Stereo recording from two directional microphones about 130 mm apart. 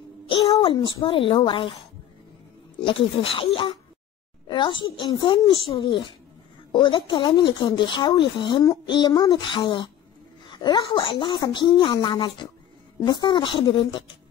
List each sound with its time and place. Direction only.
0.4 s a sound: 30° left (ahead or behind)
1.0 s speech: 40° left (ahead or behind)
2.8 s speech: 40° left (ahead or behind)